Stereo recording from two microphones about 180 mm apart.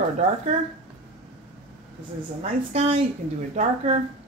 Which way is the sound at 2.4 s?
35° right (ahead or behind).